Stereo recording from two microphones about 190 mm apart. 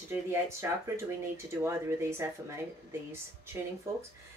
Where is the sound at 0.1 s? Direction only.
15° right (ahead or behind).